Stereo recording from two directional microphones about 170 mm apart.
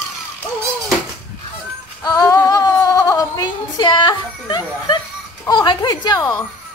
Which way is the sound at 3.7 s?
25° left (ahead or behind).